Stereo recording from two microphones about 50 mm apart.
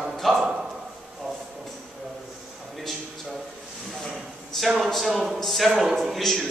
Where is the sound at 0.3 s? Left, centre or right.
Centre.